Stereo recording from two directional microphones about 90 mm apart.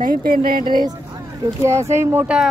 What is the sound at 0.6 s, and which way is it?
Speech, 55° right (ahead or behind).